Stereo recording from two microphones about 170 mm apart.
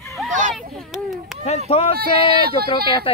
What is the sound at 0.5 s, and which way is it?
Speech, centre (ahead or behind).